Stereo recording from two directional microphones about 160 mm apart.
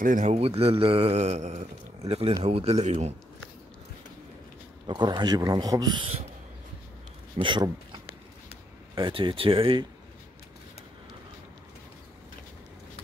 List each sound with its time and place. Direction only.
0.0 s a man's voice: 55° right (ahead or behind)
0.3 s speech: 40° right (ahead or behind)
4.8 s a man's voice: 30° right (ahead or behind)
7.3 s speech: 30° right (ahead or behind)